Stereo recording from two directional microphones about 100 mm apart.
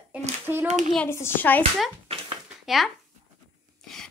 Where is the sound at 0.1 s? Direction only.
15° right (ahead or behind).